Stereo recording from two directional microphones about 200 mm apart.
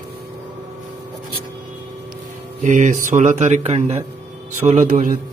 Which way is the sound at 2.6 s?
40° right (ahead or behind).